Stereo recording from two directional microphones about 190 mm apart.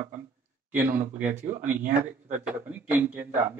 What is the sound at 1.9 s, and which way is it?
Speech, 50° right (ahead or behind).